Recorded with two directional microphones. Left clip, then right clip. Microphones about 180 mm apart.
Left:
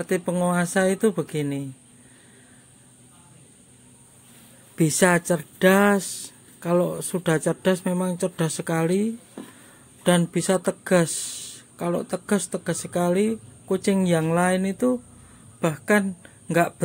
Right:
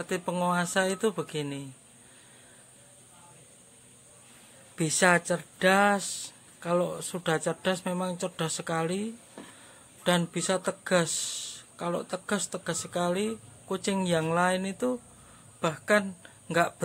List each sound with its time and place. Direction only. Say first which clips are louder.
0.0 s a woman's voice: left 5 dB; 10° left (ahead or behind)
4.7 s a woman's voice: left 4 dB; 20° left (ahead or behind)